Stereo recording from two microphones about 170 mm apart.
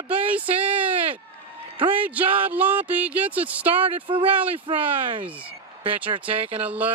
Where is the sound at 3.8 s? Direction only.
30° right (ahead or behind).